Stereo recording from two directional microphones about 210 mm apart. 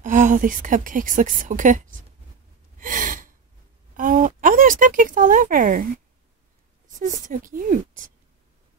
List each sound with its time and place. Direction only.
0.0 s speech: 35° right (ahead or behind)
2.8 s gasp: 40° right (ahead or behind)
3.9 s a sound: 40° right (ahead or behind)
7.2 s speech: 40° right (ahead or behind)